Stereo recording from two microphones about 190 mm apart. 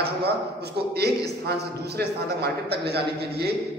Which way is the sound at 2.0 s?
55° right (ahead or behind).